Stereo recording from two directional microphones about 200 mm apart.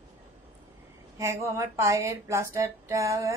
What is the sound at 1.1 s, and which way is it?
Speech, 15° right (ahead or behind).